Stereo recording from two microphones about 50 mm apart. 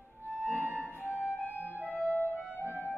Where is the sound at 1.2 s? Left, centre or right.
Left.